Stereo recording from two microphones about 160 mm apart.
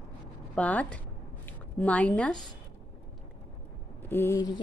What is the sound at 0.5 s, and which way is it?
A woman's voice, 10° left (ahead or behind).